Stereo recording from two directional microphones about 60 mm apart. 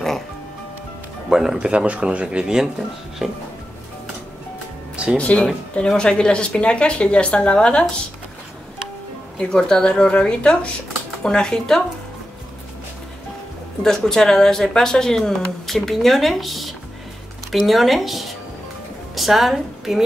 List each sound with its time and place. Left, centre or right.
1.3 s speech: centre
1.7 s speech: right
5.1 s speech: centre
9.4 s speech: centre
13.8 s a woman's voice: centre